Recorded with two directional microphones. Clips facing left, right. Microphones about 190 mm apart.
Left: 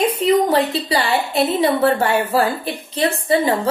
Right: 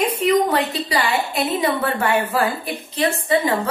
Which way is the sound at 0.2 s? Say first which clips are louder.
Left 2 dB; 30° left (ahead or behind).